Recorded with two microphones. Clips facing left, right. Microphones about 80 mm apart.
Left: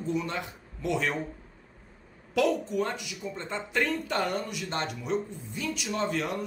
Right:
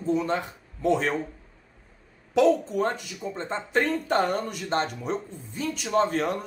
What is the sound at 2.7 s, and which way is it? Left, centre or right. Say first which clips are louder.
Speech: right 3 dB; right.